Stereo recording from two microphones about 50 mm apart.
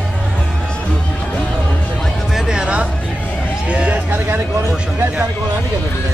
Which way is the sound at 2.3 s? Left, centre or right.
Centre.